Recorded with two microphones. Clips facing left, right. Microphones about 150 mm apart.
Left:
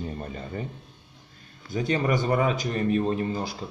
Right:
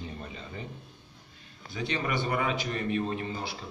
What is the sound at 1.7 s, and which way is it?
A man's voice, 45° left (ahead or behind).